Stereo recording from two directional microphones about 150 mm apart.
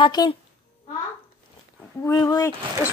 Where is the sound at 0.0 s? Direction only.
30° left (ahead or behind).